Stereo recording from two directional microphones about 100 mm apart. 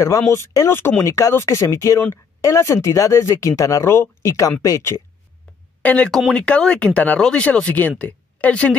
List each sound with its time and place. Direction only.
0.3 s speech: 30° left (ahead or behind)
5.8 s speech: 10° left (ahead or behind)